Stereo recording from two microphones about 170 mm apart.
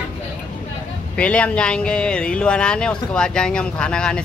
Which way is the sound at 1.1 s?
5° left (ahead or behind).